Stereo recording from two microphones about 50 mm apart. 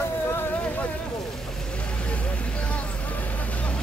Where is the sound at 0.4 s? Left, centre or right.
Left.